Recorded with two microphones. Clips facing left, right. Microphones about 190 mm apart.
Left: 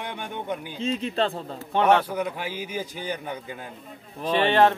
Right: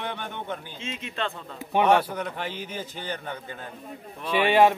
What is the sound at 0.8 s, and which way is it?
Speech, 35° left (ahead or behind).